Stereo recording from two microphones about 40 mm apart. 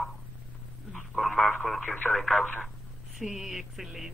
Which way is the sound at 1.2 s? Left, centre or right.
Centre.